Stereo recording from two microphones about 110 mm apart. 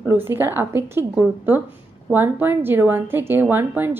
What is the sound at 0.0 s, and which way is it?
A woman's voice, 20° right (ahead or behind).